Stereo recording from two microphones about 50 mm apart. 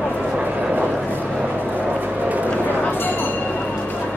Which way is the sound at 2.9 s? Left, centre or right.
Left.